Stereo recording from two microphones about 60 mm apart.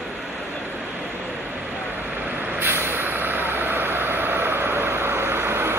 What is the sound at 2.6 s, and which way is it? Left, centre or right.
Vehicle, right.